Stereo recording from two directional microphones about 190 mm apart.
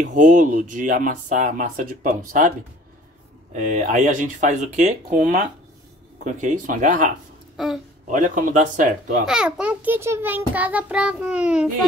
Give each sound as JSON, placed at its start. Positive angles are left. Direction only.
{"t": 0.0, "sound": "speech", "side_deg": -40}
{"t": 3.5, "sound": "speech", "side_deg": -40}
{"t": 7.5, "sound": "speech", "side_deg": 0}
{"t": 8.1, "sound": "speech", "side_deg": -45}
{"t": 9.2, "sound": "a child's voice", "side_deg": -5}